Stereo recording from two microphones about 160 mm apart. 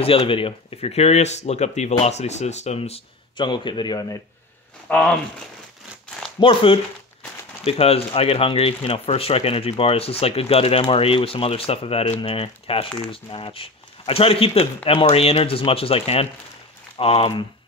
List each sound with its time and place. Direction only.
0.0 s speech: 35° left (ahead or behind)
4.8 s speech: 10° left (ahead or behind)
6.1 s a sound: 5° left (ahead or behind)
6.4 s speech: 35° left (ahead or behind)